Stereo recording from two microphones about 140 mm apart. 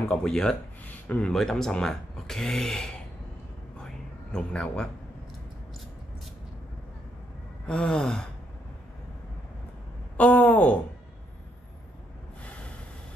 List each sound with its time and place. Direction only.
0.1 s speech: 5° left (ahead or behind)
3.7 s a sound: 5° left (ahead or behind)
7.6 s speech: 5° left (ahead or behind)
10.1 s speech: 10° left (ahead or behind)